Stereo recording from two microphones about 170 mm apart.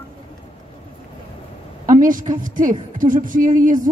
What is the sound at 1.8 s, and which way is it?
A woman's voice, 50° right (ahead or behind).